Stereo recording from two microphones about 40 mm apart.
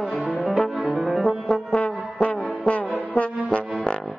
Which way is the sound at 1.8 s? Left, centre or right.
Left.